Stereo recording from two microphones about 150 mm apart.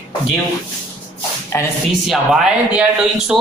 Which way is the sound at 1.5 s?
15° left (ahead or behind).